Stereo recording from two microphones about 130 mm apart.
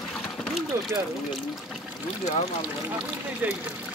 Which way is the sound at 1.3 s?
Centre (ahead or behind).